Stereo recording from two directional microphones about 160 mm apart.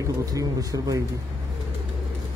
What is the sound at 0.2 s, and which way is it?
Speech, 20° right (ahead or behind).